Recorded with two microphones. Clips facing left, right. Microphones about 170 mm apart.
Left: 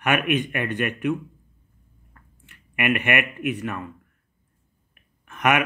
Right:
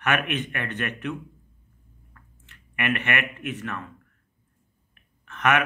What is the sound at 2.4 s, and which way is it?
Speech, 10° left (ahead or behind).